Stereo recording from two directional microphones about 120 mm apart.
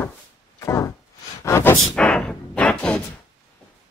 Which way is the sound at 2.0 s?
5° left (ahead or behind).